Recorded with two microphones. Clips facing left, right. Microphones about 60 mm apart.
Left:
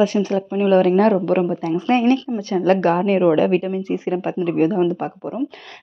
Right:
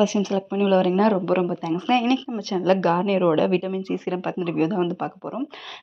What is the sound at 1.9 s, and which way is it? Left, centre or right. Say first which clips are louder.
A woman's voice: left 4 dB; left.